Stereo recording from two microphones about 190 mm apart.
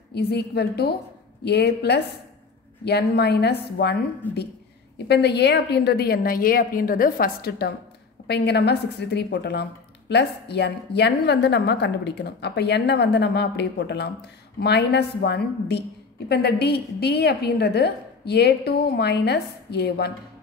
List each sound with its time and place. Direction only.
0.1 s a woman's voice: 60° left (ahead or behind)
4.2 s a woman's voice: 10° left (ahead or behind)
4.9 s a woman's voice: 60° left (ahead or behind)